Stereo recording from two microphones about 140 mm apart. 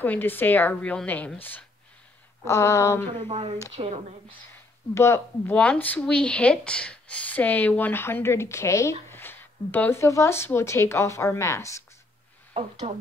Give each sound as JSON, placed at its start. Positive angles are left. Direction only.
{"t": 0.0, "sound": "speech", "side_deg": 15}
{"t": 2.4, "sound": "speech", "side_deg": 20}
{"t": 3.3, "sound": "a woman's voice", "side_deg": -45}
{"t": 4.9, "sound": "speech", "side_deg": 20}
{"t": 5.5, "sound": "speech", "side_deg": 10}